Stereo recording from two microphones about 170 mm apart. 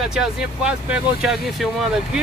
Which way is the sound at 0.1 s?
5° right (ahead or behind).